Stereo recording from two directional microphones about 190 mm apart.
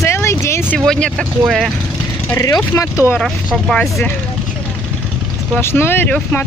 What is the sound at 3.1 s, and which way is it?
Speech, 5° left (ahead or behind).